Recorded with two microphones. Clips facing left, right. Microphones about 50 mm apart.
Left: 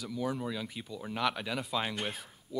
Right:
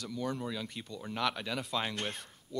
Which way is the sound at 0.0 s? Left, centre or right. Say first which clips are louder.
Left 2 dB; centre.